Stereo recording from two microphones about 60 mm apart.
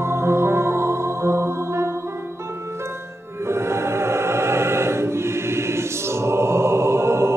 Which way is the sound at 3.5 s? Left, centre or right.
Right.